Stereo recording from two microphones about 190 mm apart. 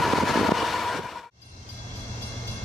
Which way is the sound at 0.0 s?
Centre (ahead or behind).